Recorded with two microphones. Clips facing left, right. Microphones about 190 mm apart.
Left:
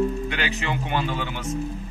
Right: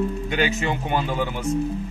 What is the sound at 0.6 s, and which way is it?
Speech, 40° right (ahead or behind).